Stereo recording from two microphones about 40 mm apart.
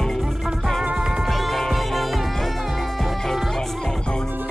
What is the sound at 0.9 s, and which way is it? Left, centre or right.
Music, centre.